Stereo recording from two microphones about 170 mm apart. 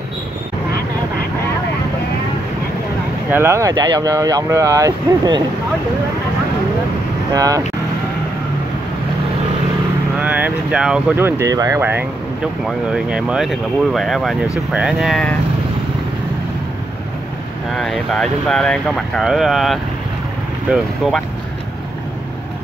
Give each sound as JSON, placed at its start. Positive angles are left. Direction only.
{"t": 3.3, "sound": "speech", "side_deg": -15}
{"t": 7.3, "sound": "speech", "side_deg": -20}
{"t": 10.1, "sound": "speech", "side_deg": -10}
{"t": 17.7, "sound": "speech", "side_deg": 0}